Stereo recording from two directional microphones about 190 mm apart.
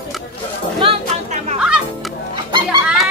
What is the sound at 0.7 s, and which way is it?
Music, 30° right (ahead or behind).